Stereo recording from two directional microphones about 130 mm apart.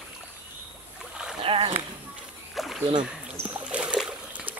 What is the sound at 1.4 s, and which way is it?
Speech, 45° right (ahead or behind).